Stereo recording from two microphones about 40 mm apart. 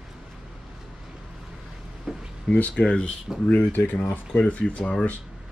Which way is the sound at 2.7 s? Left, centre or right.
Left.